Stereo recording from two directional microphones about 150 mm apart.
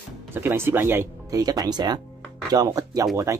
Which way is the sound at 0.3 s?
15° right (ahead or behind).